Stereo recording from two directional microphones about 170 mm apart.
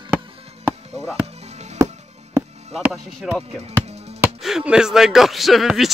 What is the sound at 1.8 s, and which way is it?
Music, 15° right (ahead or behind).